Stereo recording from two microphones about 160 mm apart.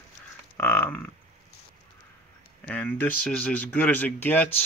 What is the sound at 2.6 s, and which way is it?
Speech, 10° left (ahead or behind).